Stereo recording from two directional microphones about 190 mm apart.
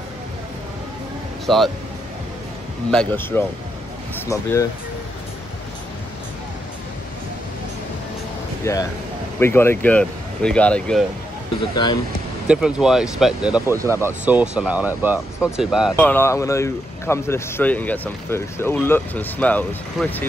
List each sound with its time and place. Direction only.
1.4 s speech: centre (ahead or behind)
2.9 s speech: 5° left (ahead or behind)
8.6 s speech: 15° left (ahead or behind)
11.7 s speech: 20° left (ahead or behind)
12.4 s speech: 5° right (ahead or behind)
16.0 s speech: 10° left (ahead or behind)